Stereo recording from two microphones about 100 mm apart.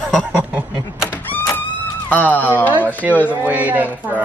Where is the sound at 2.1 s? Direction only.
15° left (ahead or behind).